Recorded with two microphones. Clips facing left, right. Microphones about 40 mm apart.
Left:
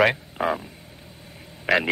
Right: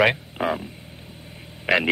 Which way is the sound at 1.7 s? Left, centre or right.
Centre.